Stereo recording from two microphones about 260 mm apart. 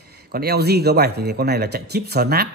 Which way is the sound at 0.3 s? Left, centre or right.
Right.